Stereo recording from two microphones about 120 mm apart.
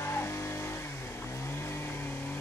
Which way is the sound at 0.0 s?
20° left (ahead or behind).